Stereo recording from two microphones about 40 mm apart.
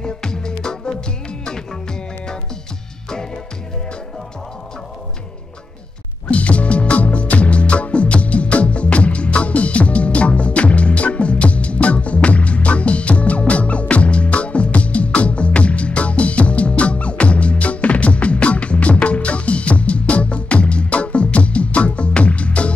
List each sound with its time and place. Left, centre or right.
0.0 s music: centre
6.3 s music: left